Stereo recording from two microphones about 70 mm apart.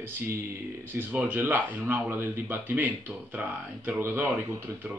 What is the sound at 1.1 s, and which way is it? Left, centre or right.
Speech, right.